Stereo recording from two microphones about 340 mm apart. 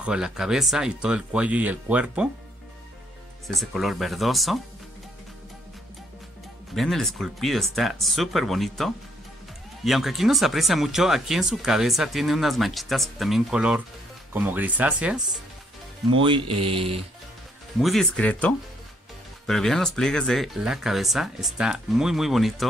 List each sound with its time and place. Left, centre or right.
0.0 s speech: centre
3.4 s speech: centre
6.7 s speech: centre
16.1 s speech: centre
17.7 s speech: centre